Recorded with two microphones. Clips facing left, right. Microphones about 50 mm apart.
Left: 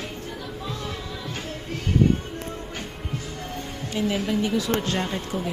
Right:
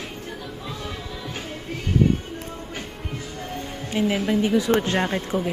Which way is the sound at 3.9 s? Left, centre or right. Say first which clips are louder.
Right 3 dB; centre.